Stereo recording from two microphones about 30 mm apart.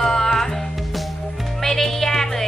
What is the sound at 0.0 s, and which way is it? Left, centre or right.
Music, centre.